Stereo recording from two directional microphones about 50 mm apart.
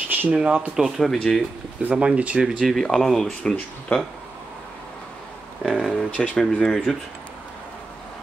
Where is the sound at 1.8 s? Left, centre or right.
Right.